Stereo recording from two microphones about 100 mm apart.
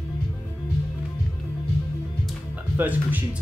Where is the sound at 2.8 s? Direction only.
15° right (ahead or behind).